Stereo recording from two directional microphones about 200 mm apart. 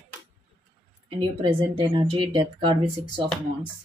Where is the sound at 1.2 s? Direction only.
25° right (ahead or behind).